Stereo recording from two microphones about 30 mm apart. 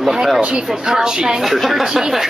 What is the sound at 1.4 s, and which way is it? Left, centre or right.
Speech, centre.